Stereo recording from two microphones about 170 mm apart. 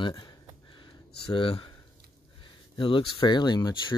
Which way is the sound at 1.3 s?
30° left (ahead or behind).